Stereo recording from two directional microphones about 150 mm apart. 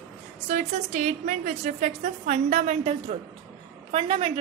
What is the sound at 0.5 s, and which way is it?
A woman's voice, 55° right (ahead or behind).